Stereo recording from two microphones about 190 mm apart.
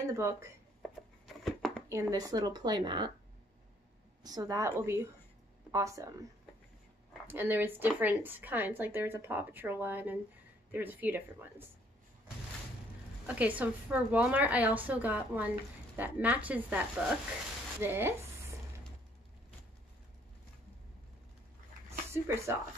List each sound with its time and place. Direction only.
0.0 s speech: 15° right (ahead or behind)
1.2 s a sound: centre (ahead or behind)
1.9 s speech: 15° right (ahead or behind)
4.2 s a woman's voice: 20° right (ahead or behind)
7.2 s a woman's voice: 10° right (ahead or behind)
13.3 s a woman's voice: 10° right (ahead or behind)
17.8 s sizzle: 10° right (ahead or behind)
22.1 s a woman's voice: 15° right (ahead or behind)